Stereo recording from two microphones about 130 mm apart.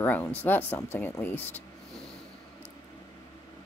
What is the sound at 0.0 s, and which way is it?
A woman's voice, 15° left (ahead or behind).